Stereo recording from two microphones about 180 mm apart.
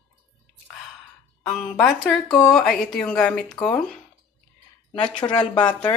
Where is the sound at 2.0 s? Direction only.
Centre (ahead or behind).